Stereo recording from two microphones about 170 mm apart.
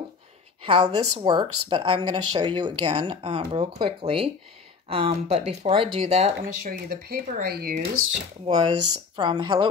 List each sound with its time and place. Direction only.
0.7 s speech: 30° right (ahead or behind)
6.4 s speech: 55° right (ahead or behind)
8.5 s speech: 35° right (ahead or behind)